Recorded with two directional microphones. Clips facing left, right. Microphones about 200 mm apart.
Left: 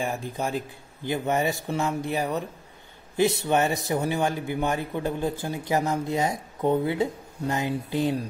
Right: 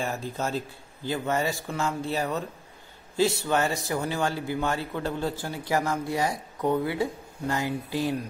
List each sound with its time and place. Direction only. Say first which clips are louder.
0.0 s a man's voice: left 1 dB; 15° left (ahead or behind)